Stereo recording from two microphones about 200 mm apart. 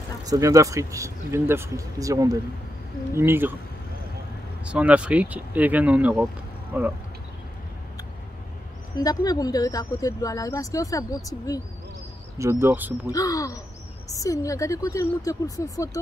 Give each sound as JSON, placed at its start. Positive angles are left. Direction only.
{"t": 0.2, "sound": "speech", "side_deg": -15}
{"t": 4.6, "sound": "speech", "side_deg": -5}
{"t": 8.9, "sound": "speech", "side_deg": 20}
{"t": 12.4, "sound": "speech", "side_deg": -15}
{"t": 13.1, "sound": "speech", "side_deg": 15}